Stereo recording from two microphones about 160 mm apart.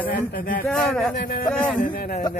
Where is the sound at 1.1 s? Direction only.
60° left (ahead or behind).